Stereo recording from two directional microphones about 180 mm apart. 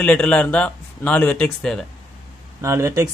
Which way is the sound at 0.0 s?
5° left (ahead or behind).